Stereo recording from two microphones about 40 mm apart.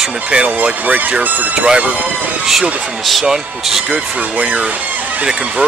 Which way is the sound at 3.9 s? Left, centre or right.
Right.